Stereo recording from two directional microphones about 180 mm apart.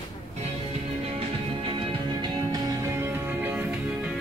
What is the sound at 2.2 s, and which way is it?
Music, 20° right (ahead or behind).